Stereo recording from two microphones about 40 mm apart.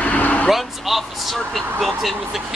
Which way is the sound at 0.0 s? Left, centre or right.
Left.